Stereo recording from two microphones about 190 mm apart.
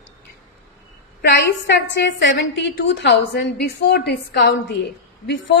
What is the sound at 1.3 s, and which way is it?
A woman's voice, 70° left (ahead or behind).